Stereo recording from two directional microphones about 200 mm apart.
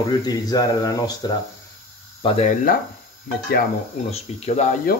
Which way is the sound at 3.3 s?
50° left (ahead or behind).